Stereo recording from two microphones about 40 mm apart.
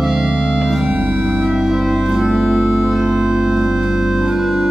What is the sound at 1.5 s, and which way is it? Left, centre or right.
Organ, centre.